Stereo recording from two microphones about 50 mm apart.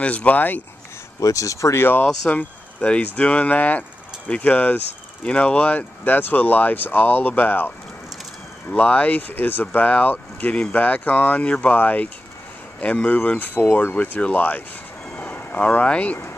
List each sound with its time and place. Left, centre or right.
0.0 s speech: left
1.4 s speech: left
1.8 s speech: left
2.2 s speech: left
9.3 s speech: left
15.9 s speech: left